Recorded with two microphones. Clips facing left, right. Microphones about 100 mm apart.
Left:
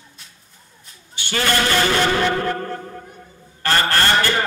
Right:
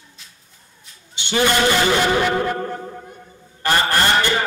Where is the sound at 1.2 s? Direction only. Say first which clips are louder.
Right 3 dB; 20° right (ahead or behind).